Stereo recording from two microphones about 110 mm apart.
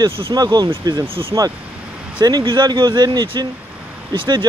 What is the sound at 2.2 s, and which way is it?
Speech, 40° right (ahead or behind).